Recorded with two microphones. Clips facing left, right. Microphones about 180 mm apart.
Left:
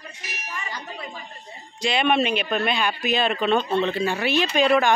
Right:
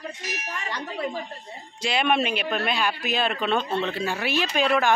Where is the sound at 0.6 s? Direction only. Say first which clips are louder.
Right 4 dB; 75° right (ahead or behind).